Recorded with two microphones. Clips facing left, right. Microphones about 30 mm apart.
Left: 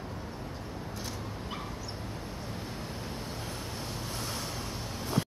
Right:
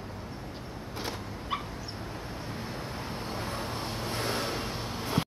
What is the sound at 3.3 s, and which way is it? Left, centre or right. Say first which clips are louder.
Vehicle: right 4 dB; right.